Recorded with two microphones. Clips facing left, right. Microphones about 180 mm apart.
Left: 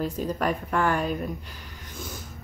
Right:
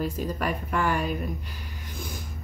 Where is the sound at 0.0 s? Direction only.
10° right (ahead or behind).